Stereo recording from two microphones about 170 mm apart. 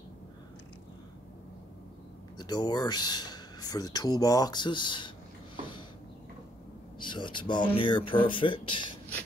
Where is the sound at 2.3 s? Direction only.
25° left (ahead or behind).